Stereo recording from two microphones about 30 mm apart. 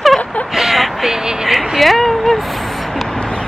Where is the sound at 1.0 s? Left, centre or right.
Centre.